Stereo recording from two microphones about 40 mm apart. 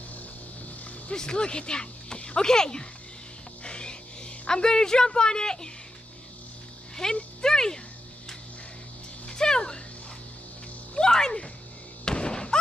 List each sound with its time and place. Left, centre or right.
1.1 s speech: centre
3.6 s music: left
7.0 s speech: centre
9.3 s music: centre
11.0 s music: centre
12.0 s thunk: left